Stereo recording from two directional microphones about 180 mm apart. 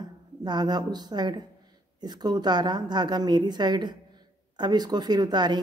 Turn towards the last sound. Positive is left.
turn(degrees=-25)  # may be behind; listen again after turning